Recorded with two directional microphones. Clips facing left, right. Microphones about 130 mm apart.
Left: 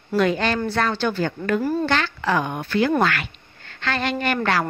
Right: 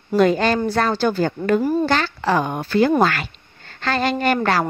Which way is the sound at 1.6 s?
15° right (ahead or behind).